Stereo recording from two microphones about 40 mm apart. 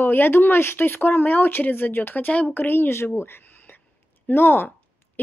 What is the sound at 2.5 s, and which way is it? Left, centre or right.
Speech, left.